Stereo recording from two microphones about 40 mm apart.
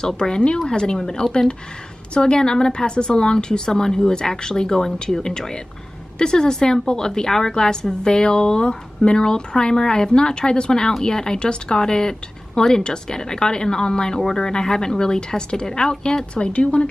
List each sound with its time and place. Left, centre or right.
0.0 s a woman's voice: centre